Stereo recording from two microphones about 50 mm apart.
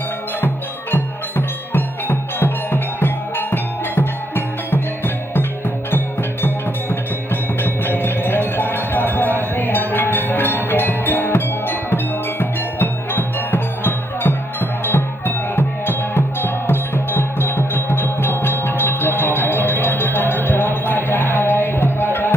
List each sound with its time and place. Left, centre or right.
0.9 s music: left